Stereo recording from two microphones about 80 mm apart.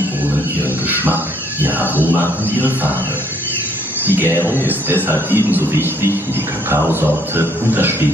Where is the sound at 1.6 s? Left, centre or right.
Right.